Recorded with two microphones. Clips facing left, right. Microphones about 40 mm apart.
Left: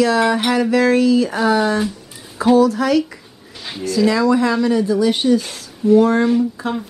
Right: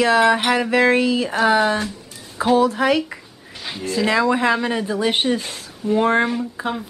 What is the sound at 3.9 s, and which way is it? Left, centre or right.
A woman's voice, right.